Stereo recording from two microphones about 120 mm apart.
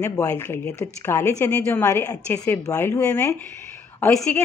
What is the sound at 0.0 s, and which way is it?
A woman's voice, 25° left (ahead or behind).